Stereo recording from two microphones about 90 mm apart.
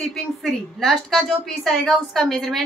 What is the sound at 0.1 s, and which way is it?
A woman's voice, centre (ahead or behind).